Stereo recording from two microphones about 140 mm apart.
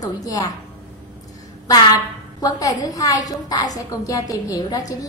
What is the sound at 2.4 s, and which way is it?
A woman's voice, 25° left (ahead or behind).